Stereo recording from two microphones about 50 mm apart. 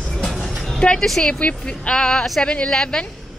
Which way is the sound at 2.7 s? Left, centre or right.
Centre.